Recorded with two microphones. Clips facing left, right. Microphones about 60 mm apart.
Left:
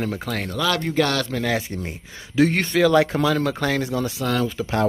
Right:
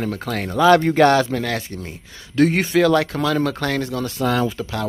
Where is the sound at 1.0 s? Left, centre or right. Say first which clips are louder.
Right 9 dB; right.